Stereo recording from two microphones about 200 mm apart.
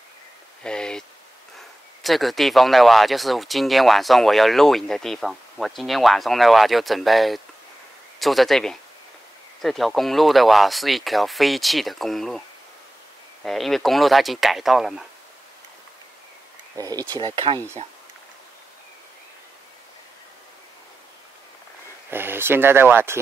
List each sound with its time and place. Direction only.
0.7 s speech: 5° left (ahead or behind)
2.0 s speech: centre (ahead or behind)
16.7 s speech: 20° right (ahead or behind)
22.1 s speech: 10° right (ahead or behind)